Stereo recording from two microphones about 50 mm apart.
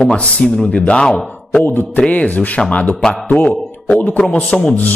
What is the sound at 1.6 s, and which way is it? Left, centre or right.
Music, left.